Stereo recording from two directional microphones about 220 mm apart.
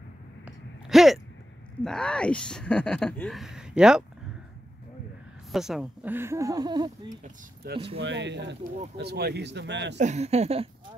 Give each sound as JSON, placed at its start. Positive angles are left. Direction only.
{"t": 0.5, "sound": "a sound", "side_deg": 0}
{"t": 1.9, "sound": "speech", "side_deg": 5}
{"t": 5.5, "sound": "speech", "side_deg": 0}
{"t": 7.2, "sound": "speech", "side_deg": -45}
{"t": 9.9, "sound": "speech", "side_deg": -30}